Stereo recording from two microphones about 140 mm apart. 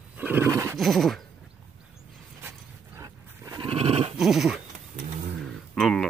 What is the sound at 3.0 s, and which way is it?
Wild animals, 20° right (ahead or behind).